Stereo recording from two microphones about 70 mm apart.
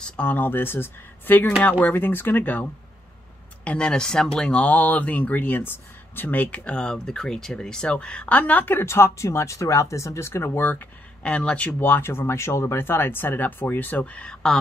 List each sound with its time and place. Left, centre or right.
0.0 s speech: centre
3.6 s speech: centre; by 10.9 s left
11.2 s speech: centre